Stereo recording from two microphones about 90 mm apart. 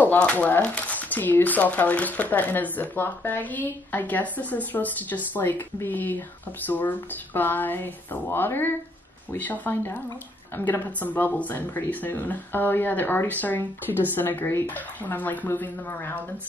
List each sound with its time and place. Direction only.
0.0 s speech: 15° left (ahead or behind)